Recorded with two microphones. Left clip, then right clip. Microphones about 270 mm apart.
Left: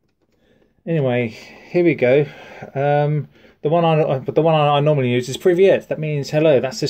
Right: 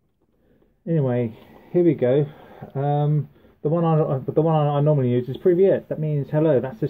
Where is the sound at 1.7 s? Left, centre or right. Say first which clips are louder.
Left 4 dB; left.